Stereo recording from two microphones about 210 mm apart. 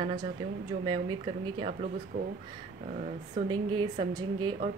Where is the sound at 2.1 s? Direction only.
40° right (ahead or behind).